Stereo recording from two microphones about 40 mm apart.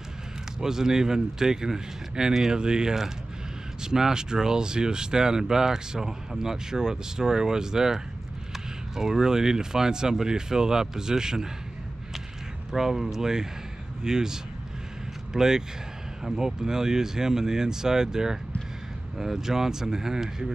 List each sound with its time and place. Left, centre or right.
0.6 s speech: centre
12.7 s speech: centre